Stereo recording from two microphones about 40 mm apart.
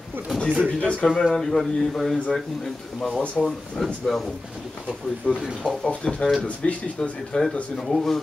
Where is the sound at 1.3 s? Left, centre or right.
Centre.